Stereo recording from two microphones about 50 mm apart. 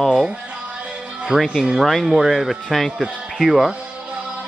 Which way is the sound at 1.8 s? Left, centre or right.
Centre.